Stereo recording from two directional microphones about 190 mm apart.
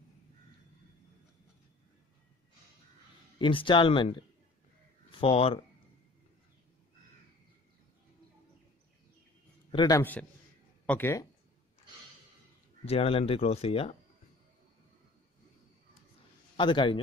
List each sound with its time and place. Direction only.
3.3 s speech: 25° left (ahead or behind)
5.2 s speech: 30° left (ahead or behind)
9.7 s a man's voice: 20° left (ahead or behind)
10.9 s speech: 10° left (ahead or behind)
12.8 s speech: 30° left (ahead or behind)
16.5 s speech: 25° left (ahead or behind)